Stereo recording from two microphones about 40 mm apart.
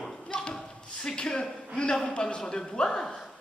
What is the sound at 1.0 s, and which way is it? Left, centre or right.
A woman's voice, left.